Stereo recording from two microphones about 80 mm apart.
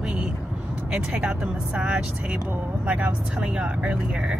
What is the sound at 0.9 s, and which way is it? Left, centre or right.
Speech, centre.